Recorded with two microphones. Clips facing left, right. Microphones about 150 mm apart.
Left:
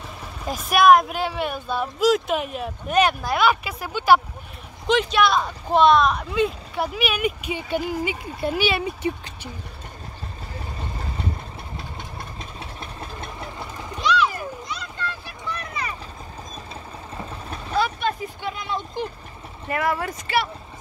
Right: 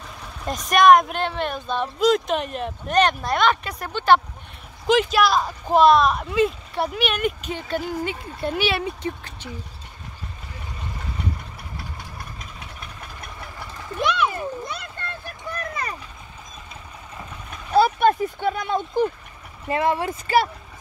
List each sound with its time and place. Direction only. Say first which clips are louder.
0.2 s speech: right 1 dB; 5° left (ahead or behind)
4.8 s speech: right 1 dB; centre (ahead or behind)
12.4 s vehicle: left 3 dB; 30° left (ahead or behind)
14.0 s a sound: left 1 dB; 55° right (ahead or behind)
17.2 s vehicle: left 4 dB; 30° left (ahead or behind)
17.9 s speech: right 8 dB; 50° right (ahead or behind)
19.7 s a woman's voice: right 2 dB; 25° right (ahead or behind)